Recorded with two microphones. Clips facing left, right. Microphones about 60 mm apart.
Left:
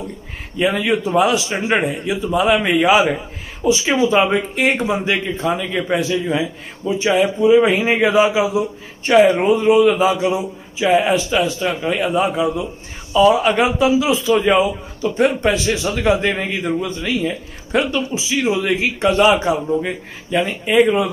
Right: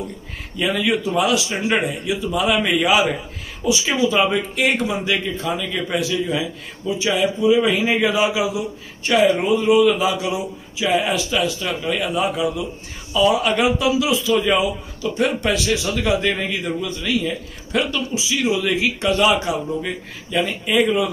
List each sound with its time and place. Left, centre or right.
0.6 s a man's voice: left